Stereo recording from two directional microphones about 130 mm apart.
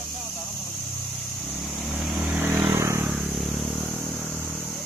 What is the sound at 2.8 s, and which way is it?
Vehicle, 20° right (ahead or behind).